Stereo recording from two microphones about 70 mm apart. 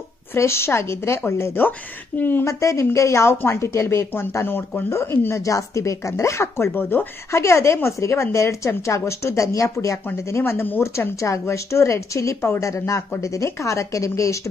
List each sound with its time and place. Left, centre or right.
0.3 s a woman's voice: left
2.4 s a woman's voice: left
7.2 s a woman's voice: left
10.2 s a woman's voice: left
10.8 s a woman's voice: left